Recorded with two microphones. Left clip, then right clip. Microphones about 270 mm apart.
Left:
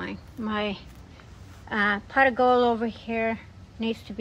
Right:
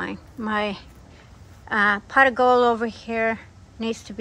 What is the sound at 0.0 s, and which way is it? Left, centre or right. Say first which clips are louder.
Speech: right 5 dB; right.